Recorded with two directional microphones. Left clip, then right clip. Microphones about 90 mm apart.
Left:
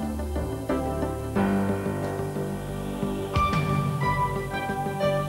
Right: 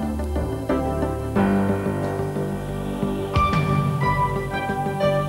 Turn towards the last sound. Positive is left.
turn(degrees=35)  # may be behind; listen again after turning